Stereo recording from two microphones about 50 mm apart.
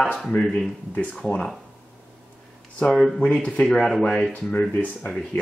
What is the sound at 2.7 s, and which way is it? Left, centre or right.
Speech, left.